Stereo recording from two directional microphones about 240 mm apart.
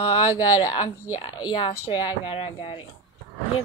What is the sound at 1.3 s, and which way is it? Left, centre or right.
A woman's voice, centre.